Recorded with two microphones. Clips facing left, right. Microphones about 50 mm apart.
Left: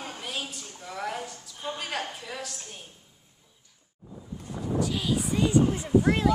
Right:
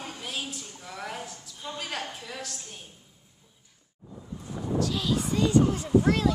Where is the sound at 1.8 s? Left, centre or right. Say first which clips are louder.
Right 1 dB; centre.